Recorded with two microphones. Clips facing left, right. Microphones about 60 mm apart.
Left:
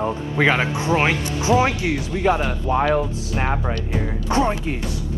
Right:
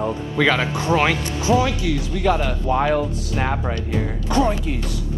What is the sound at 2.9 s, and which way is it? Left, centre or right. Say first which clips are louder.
Speech: even; centre.